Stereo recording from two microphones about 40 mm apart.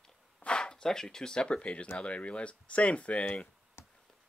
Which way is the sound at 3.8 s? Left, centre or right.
Left.